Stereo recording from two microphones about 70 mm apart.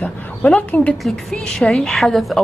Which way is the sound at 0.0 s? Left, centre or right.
Centre.